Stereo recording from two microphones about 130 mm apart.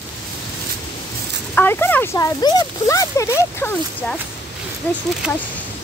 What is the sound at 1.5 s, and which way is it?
Speech, 15° left (ahead or behind).